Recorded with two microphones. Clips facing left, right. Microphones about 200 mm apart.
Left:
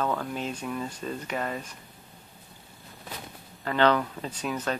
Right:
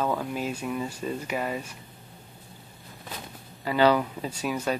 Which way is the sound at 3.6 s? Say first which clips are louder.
Right 2 dB; 10° right (ahead or behind).